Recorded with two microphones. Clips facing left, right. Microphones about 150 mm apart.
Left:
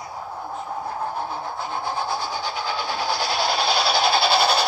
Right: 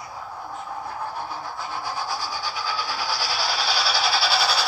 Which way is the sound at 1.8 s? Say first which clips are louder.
Left 4 dB; 20° left (ahead or behind).